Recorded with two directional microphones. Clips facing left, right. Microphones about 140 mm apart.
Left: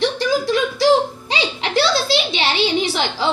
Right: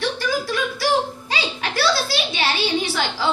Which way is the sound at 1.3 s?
20° left (ahead or behind).